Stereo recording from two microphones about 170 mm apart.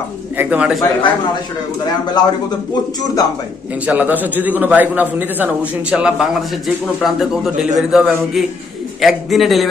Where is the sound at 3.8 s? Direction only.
10° right (ahead or behind).